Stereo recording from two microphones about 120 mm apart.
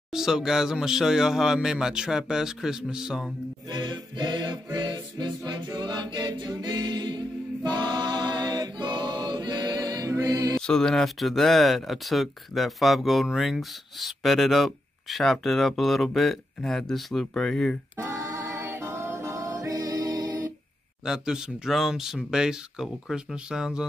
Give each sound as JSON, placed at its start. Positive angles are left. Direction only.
{"t": 0.1, "sound": "speech", "side_deg": -5}
{"t": 3.7, "sound": "music", "side_deg": -40}
{"t": 10.6, "sound": "speech", "side_deg": 5}
{"t": 17.9, "sound": "music", "side_deg": -25}
{"t": 21.0, "sound": "speech", "side_deg": -5}